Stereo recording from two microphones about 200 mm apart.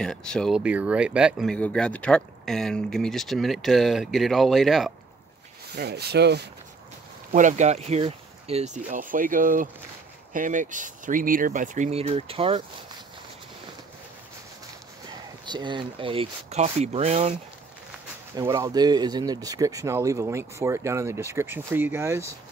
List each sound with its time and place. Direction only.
0.0 s speech: 5° left (ahead or behind)
0.6 s speech: 5° right (ahead or behind)
5.8 s speech: 55° right (ahead or behind)
7.3 s speech: 35° right (ahead or behind)
15.4 s speech: 20° right (ahead or behind)
18.3 s speech: 15° right (ahead or behind)